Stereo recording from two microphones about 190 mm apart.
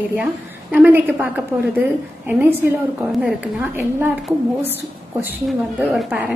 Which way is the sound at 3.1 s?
5° right (ahead or behind).